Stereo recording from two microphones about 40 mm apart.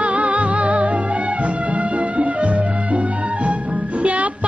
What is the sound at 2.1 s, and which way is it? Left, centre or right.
Music, right.